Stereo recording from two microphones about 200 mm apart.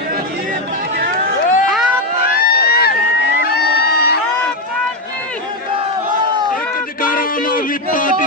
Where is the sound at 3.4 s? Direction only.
55° left (ahead or behind).